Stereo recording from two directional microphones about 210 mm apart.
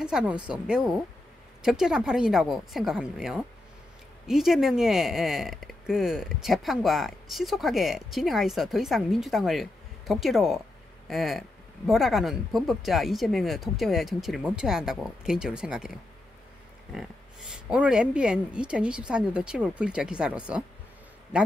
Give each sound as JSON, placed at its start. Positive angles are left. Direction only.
{"t": 0.0, "sound": "speech", "side_deg": -5}